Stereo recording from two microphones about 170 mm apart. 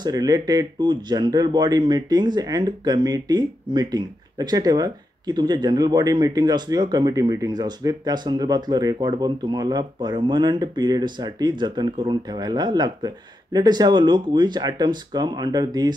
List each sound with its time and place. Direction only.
0.0 s speech: 20° right (ahead or behind)